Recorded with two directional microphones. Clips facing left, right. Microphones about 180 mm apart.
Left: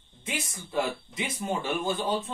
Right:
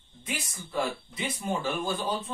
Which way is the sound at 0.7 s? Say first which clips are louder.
Left 1 dB; 15° left (ahead or behind).